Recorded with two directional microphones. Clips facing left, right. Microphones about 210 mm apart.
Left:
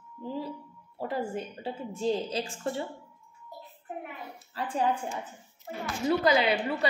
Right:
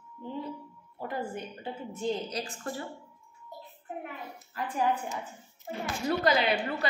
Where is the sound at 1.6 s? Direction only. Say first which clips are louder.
Left 3 dB; 25° left (ahead or behind).